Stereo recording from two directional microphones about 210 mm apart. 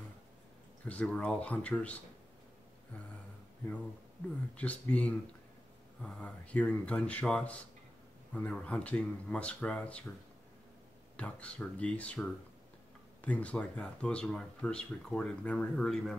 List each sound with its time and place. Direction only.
0.8 s speech: 5° left (ahead or behind)
4.6 s speech: 5° left (ahead or behind)
11.1 s speech: 5° left (ahead or behind)